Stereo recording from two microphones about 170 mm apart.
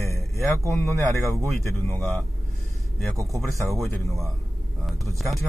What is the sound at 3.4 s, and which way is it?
Speech, centre (ahead or behind).